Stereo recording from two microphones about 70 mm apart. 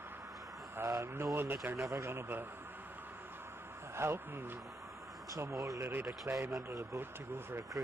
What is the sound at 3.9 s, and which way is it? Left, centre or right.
Speech, right.